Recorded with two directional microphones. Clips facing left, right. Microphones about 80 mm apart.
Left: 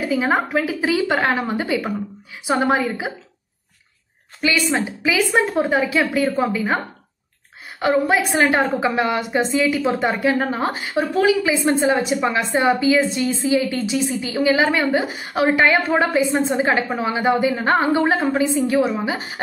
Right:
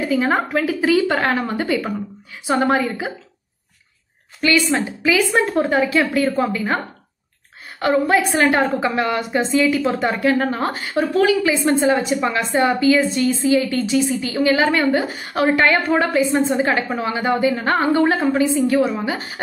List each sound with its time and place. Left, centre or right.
0.1 s a woman's voice: centre
4.4 s a woman's voice: centre